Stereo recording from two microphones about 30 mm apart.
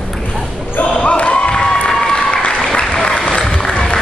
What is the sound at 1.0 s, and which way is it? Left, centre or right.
Basketball bounce, left.